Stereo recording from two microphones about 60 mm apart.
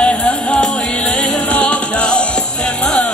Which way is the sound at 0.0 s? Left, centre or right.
Centre.